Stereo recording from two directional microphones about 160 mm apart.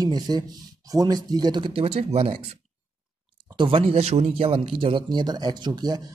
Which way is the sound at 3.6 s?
35° right (ahead or behind).